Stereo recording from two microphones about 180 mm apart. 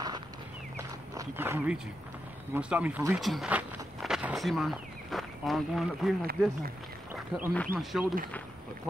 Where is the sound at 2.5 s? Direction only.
5° right (ahead or behind).